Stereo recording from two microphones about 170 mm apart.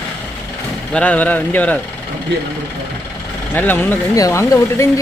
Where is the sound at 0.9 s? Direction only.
10° left (ahead or behind).